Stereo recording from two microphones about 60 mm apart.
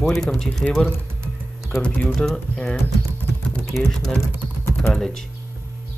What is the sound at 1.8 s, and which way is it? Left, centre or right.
Speech, left.